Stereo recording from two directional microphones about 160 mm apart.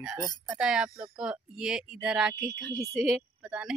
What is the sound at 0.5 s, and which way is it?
Speech, 5° right (ahead or behind).